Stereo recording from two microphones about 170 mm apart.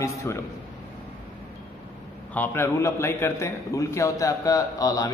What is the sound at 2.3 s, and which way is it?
A man's voice, 10° left (ahead or behind).